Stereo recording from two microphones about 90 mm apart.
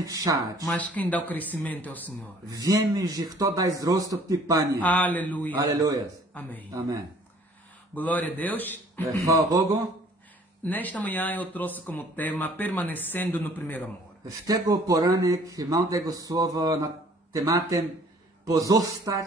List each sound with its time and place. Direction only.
0.0 s speech: 40° right (ahead or behind)
0.7 s speech: 15° left (ahead or behind)
2.6 s speech: 40° right (ahead or behind)
4.7 s speech: 20° left (ahead or behind)
5.6 s speech: 45° right (ahead or behind)
6.4 s speech: 20° left (ahead or behind)
7.9 s speech: 20° left (ahead or behind)
9.2 s speech: 35° right (ahead or behind)
10.6 s speech: 20° left (ahead or behind)
14.2 s speech: 40° right (ahead or behind)